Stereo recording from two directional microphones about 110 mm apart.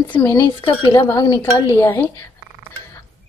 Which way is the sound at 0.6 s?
45° left (ahead or behind).